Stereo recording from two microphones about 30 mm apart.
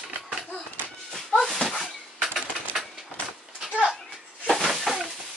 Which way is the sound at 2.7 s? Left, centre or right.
Centre.